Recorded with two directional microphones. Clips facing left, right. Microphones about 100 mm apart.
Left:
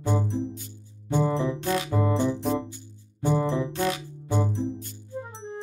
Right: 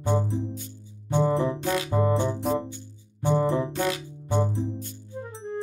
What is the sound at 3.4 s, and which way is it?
Music, 40° right (ahead or behind).